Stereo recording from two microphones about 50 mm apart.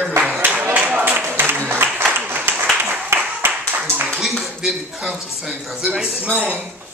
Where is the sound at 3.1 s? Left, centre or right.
Right.